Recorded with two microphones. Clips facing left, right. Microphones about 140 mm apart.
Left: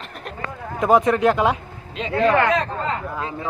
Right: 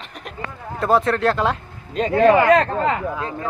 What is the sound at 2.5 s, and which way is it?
Speech, 65° right (ahead or behind).